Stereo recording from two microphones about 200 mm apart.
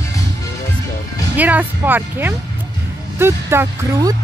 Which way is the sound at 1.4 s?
10° right (ahead or behind).